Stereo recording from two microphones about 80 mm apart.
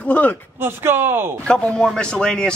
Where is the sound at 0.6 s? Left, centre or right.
Right.